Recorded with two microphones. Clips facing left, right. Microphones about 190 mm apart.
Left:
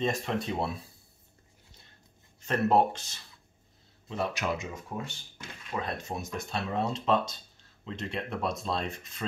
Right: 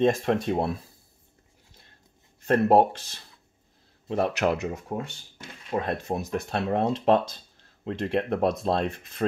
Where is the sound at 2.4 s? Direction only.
55° right (ahead or behind).